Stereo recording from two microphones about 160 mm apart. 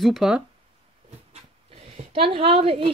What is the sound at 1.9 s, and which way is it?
Speech, 35° right (ahead or behind).